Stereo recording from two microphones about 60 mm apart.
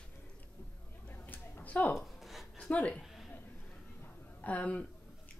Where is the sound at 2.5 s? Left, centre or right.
Centre.